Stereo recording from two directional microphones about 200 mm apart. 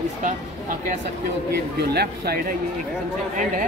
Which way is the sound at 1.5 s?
50° right (ahead or behind).